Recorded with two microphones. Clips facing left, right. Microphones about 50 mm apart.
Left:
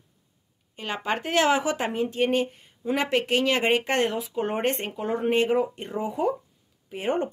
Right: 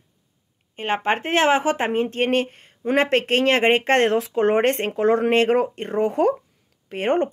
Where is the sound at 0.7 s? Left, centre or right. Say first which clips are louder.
Right 6 dB; right.